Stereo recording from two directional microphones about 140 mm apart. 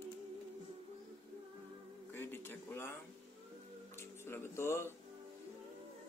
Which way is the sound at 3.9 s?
15° left (ahead or behind).